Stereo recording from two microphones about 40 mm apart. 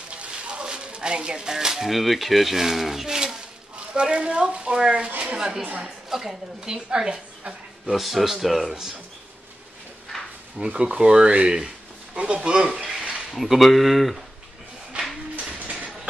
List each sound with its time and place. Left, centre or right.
0.1 s a woman's voice: right
6.0 s a woman's voice: centre
6.9 s a woman's voice: right
7.8 s speech: centre
10.6 s speech: right
12.7 s speech: centre
13.3 s speech: centre